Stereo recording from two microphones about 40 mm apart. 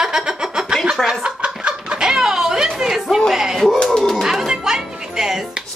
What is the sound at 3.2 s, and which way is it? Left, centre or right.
Speech, centre.